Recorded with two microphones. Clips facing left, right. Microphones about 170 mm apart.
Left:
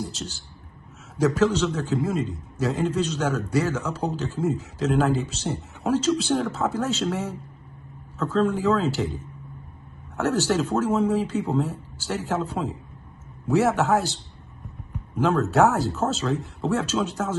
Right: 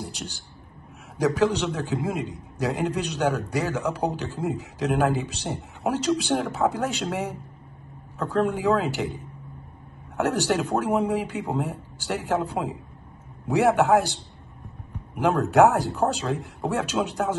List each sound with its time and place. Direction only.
0.0 s a man's voice: 15° right (ahead or behind)
10.1 s a man's voice: 15° right (ahead or behind)